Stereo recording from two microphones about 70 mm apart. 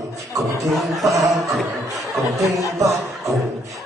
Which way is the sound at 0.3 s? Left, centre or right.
Right.